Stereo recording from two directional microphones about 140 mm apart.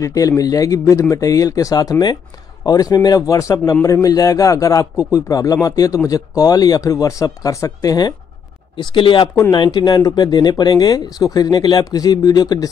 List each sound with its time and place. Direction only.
0.0 s a man's voice: 25° left (ahead or behind)